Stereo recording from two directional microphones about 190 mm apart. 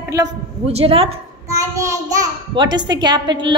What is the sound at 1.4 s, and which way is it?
A child's voice, 15° right (ahead or behind).